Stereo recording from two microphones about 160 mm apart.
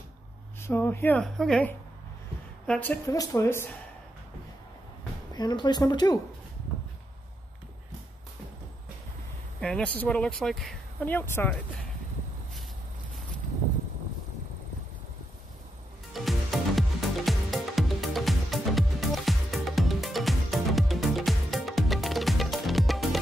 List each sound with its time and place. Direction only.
0.6 s a woman's voice: 15° left (ahead or behind)
3.1 s speech: 20° left (ahead or behind)
5.3 s speech: 25° left (ahead or behind)
9.6 s speech: 5° left (ahead or behind)
16.1 s music: centre (ahead or behind)